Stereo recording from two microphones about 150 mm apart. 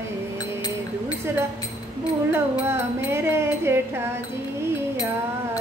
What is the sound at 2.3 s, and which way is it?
Speech, 15° right (ahead or behind).